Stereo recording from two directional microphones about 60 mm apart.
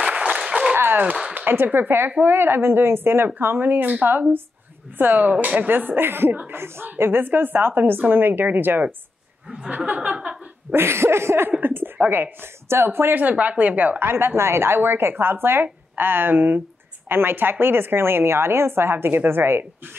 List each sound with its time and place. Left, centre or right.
0.0 s applause: centre
0.7 s a sound: right
1.3 s a woman's voice: right
9.5 s speech: centre
10.7 s a sound: right
11.6 s a woman's voice: right
13.2 s a woman's voice: right